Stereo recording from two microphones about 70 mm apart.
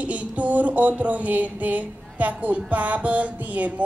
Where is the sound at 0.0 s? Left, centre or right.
Centre.